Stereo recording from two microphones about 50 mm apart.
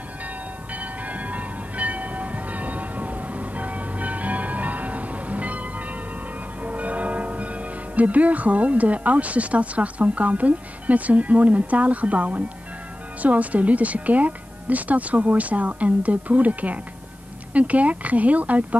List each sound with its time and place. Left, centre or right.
0.7 s train: right
6.6 s speech: right